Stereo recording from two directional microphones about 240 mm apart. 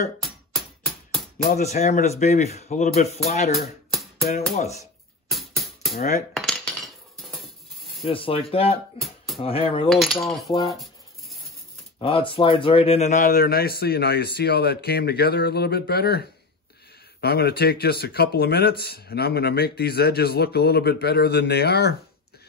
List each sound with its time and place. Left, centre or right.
0.2 s music: centre
1.5 s a man's voice: left
3.9 s music: centre
4.6 s a man's voice: left
5.3 s music: centre
6.3 s cutlery: centre
7.8 s a sound: centre
8.1 s a man's voice: left
8.9 s music: centre
9.4 s a man's voice: left
9.8 s cutlery: centre
10.5 s speech: centre
10.8 s a sound: centre
12.0 s speech: left